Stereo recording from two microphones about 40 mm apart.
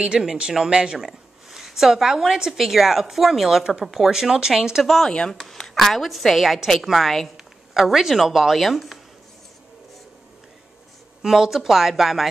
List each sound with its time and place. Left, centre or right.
0.2 s speech: centre
0.9 s a woman's voice: centre
3.9 s speech: centre
4.8 s a woman's voice: centre
11.2 s speech: centre